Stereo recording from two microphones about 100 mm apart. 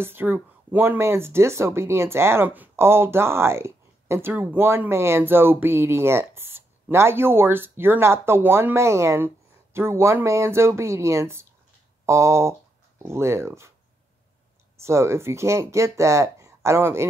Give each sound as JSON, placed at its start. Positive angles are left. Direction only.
{"t": 0.0, "sound": "speech", "side_deg": -20}
{"t": 14.8, "sound": "speech", "side_deg": -30}